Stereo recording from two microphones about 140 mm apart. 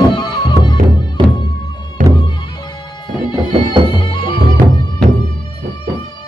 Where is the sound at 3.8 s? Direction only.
35° left (ahead or behind).